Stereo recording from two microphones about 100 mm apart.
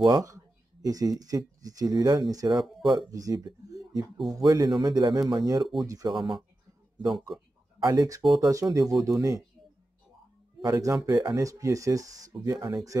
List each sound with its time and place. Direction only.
0.0 s speech: 40° right (ahead or behind)
2.6 s speech: centre (ahead or behind)
3.1 s speech: 35° right (ahead or behind)
6.1 s speech: centre (ahead or behind)
7.8 s speech: 35° right (ahead or behind)
10.6 s speech: 30° right (ahead or behind)